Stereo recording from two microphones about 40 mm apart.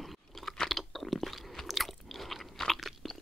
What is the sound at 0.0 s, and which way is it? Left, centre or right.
Chewing, centre.